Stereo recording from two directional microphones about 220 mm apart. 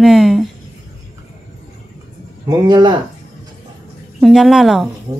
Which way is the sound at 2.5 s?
20° right (ahead or behind).